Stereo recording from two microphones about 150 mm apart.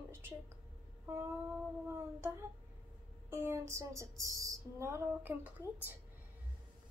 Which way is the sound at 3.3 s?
15° right (ahead or behind).